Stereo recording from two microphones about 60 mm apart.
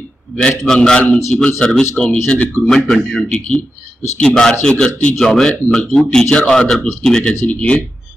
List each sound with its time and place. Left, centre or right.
0.4 s a man's voice: centre
2.0 s speech: left
2.6 s a man's voice: centre